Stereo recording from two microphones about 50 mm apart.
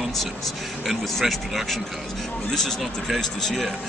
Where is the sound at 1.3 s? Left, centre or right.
Centre.